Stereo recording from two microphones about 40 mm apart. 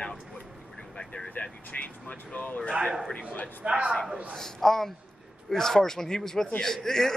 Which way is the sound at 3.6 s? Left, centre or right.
Right.